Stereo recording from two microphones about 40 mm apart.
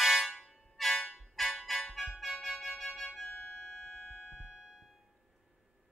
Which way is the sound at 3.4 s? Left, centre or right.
Centre.